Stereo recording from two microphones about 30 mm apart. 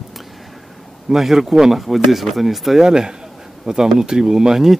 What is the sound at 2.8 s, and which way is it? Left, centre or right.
Speech, right.